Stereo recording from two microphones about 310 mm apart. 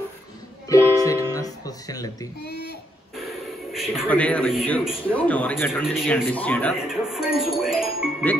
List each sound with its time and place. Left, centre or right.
0.7 s music: centre
2.4 s a sound: left
3.2 s a man's voice: centre